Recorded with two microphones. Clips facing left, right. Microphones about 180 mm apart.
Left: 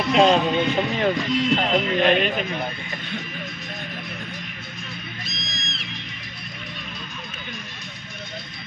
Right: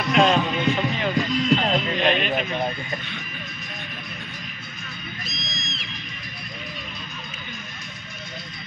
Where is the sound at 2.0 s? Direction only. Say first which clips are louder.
Left 6 dB; 50° left (ahead or behind).